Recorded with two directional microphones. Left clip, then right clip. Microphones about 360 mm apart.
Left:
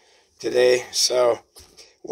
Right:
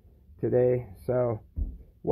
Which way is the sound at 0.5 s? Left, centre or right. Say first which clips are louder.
Left 7 dB; left.